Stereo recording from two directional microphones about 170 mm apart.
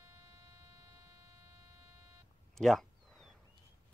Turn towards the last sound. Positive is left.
turn(degrees=0)  # may be behind; listen again after turning